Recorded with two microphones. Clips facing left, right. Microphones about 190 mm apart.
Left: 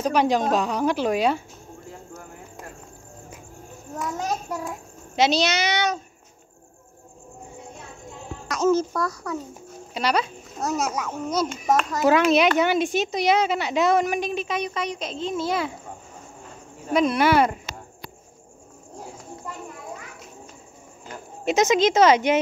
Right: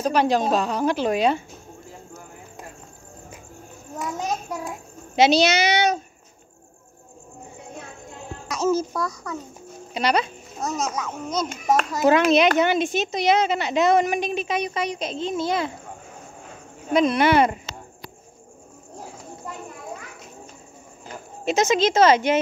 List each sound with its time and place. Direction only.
0.0 s a child's voice: 15° left (ahead or behind)
5.1 s a woman's voice: 5° right (ahead or behind)
8.5 s a woman's voice: 5° right (ahead or behind)
11.6 s a woman's voice: centre (ahead or behind)
16.9 s a woman's voice: 5° left (ahead or behind)
21.5 s a child's voice: 15° left (ahead or behind)